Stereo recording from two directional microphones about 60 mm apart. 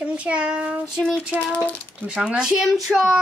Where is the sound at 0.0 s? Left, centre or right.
Centre.